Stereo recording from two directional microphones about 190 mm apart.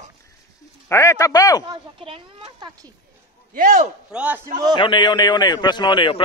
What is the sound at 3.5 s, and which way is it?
Speech, 45° right (ahead or behind).